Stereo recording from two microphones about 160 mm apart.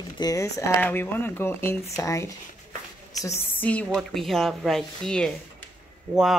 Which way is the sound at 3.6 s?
10° left (ahead or behind).